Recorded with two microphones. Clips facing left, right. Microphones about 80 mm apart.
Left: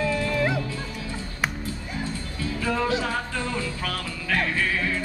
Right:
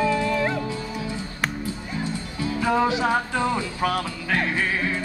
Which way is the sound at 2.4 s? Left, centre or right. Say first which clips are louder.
Right 5 dB; right.